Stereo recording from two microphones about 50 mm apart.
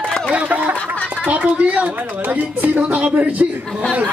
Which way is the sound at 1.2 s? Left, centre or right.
Right.